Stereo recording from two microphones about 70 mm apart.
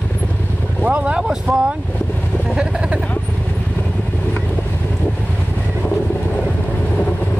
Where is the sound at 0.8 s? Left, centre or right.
Centre.